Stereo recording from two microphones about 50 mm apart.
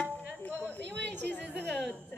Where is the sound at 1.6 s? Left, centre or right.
Left.